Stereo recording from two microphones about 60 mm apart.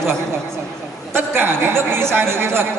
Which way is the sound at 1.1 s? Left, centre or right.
Right.